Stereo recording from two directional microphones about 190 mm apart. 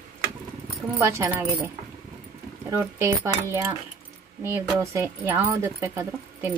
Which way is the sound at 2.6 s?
15° right (ahead or behind).